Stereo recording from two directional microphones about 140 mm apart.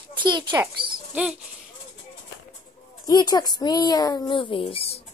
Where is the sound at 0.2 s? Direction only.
35° right (ahead or behind).